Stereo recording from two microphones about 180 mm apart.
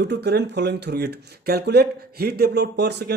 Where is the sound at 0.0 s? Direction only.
65° right (ahead or behind).